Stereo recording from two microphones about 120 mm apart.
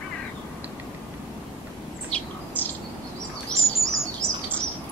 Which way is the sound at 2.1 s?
15° left (ahead or behind).